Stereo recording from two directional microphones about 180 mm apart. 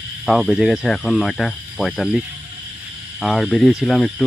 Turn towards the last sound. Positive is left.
turn(degrees=5)  # may be behind; listen again after turning